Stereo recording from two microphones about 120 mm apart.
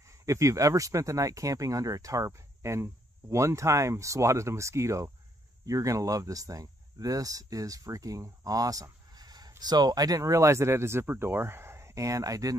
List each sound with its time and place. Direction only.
0.2 s speech: 25° right (ahead or behind)